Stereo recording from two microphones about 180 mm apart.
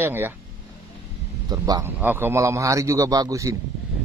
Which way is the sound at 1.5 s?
20° right (ahead or behind).